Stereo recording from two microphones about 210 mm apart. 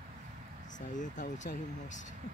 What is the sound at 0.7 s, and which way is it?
Speech, 35° left (ahead or behind).